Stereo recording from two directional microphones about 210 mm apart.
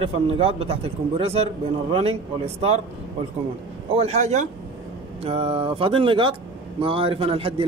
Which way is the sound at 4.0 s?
30° right (ahead or behind).